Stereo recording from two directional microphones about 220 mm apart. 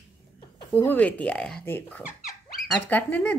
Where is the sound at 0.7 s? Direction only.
5° left (ahead or behind).